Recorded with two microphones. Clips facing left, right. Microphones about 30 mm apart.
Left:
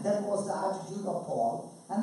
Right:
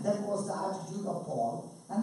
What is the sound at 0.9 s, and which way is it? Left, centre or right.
Speech, centre.